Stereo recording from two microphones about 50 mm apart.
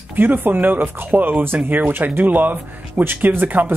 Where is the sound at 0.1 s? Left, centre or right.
Right.